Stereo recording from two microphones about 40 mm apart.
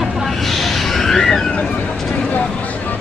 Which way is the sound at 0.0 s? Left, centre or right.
Centre.